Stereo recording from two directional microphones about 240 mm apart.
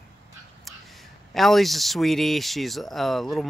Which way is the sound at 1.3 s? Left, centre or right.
Centre.